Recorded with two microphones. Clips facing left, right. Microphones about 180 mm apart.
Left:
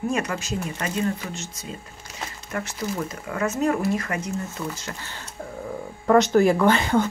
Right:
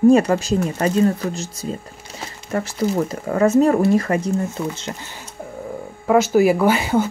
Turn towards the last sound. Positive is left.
turn(degrees=-10)  # may be behind; listen again after turning